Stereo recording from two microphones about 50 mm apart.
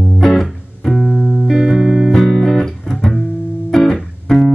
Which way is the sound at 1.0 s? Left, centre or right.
Left.